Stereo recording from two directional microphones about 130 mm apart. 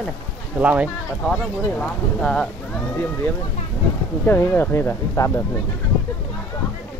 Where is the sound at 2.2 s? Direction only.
5° left (ahead or behind).